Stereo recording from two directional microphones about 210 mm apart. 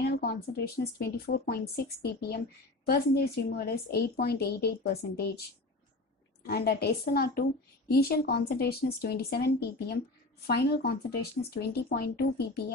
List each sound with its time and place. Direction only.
0.2 s speech: 45° left (ahead or behind)
6.4 s speech: 50° left (ahead or behind)